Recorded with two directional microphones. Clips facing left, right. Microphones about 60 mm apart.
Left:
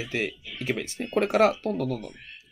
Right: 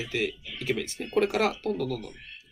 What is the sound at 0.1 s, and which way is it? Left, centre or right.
Speech, left.